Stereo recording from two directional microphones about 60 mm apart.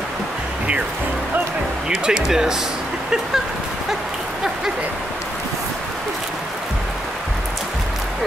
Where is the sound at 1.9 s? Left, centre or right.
Centre.